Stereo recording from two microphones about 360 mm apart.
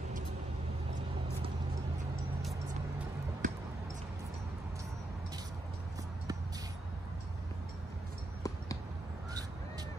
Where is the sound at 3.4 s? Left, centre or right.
Right.